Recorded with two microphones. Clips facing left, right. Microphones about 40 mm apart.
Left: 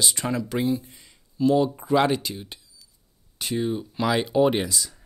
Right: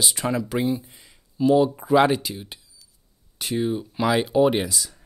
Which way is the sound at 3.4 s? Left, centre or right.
Centre.